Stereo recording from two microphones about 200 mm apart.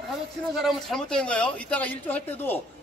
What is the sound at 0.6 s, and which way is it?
Speech, centre (ahead or behind).